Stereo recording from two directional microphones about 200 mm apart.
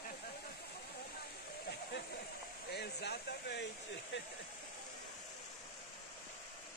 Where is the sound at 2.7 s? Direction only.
55° left (ahead or behind).